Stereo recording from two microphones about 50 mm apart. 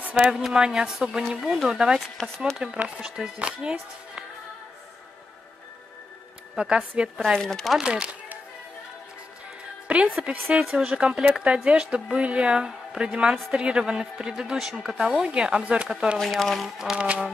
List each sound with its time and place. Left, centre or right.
0.1 s a woman's voice: centre
1.7 s a woman's voice: centre
2.0 s speech: centre
2.5 s a woman's voice: centre
6.5 s speech: centre
7.3 s speech: centre
7.8 s a woman's voice: centre
9.8 s music: right
10.6 s a woman's voice: centre
16.2 s speech: centre
16.7 s a woman's voice: centre
17.0 s a woman's voice: centre